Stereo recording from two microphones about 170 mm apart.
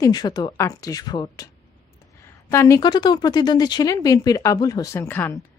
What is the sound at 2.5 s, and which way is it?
Speech, 15° left (ahead or behind).